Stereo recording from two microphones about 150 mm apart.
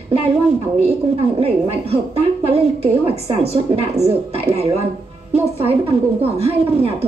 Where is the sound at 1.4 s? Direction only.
40° right (ahead or behind).